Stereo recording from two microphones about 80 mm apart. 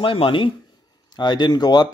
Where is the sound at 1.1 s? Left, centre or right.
Left.